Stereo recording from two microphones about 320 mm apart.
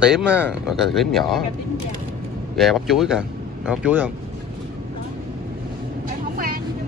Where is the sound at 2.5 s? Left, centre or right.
Centre.